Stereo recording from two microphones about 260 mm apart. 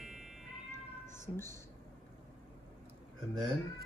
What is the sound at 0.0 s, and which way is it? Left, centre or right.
Cat, centre.